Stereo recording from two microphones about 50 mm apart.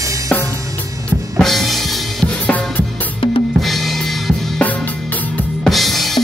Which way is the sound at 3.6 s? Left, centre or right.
Centre.